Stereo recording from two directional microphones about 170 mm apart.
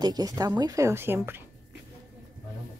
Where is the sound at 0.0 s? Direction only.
20° right (ahead or behind).